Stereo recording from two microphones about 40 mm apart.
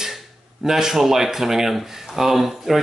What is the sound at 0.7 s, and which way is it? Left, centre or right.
Speech, centre.